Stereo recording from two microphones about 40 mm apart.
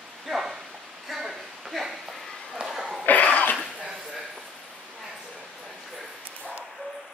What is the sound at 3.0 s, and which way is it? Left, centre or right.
Cough, left.